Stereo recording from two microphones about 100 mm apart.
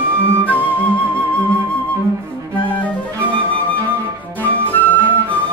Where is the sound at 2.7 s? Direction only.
15° left (ahead or behind).